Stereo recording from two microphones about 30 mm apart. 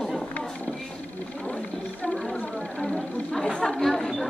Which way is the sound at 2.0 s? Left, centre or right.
Left.